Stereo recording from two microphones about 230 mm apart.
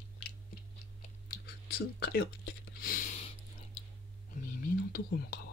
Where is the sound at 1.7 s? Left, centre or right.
Left.